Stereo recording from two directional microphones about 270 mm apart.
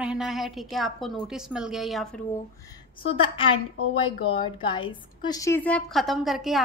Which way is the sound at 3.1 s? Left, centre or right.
Centre.